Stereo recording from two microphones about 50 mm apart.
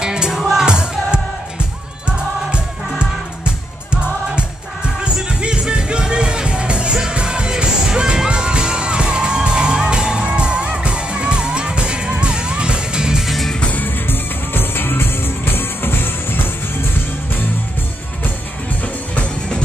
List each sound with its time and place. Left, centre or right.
0.0 s music: centre
0.3 s music: centre
0.7 s music: centre
13.6 s music: left
18.8 s music: left